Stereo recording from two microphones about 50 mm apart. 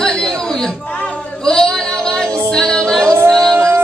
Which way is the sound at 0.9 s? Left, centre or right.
Left.